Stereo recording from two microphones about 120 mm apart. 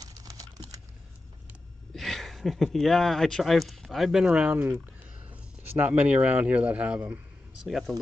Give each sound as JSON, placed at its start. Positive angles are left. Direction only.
{"t": 0.0, "sound": "typing", "side_deg": -30}
{"t": 2.0, "sound": "speech", "side_deg": 0}